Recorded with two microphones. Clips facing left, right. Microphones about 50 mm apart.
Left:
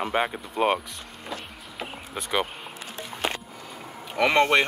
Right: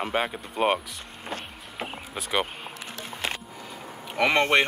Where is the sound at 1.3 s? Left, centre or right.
Right.